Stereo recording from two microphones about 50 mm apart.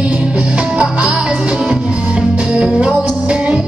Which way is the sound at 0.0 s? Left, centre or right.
Right.